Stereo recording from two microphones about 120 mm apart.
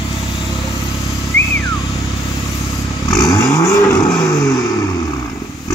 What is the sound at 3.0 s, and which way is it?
Vehicle, 30° left (ahead or behind).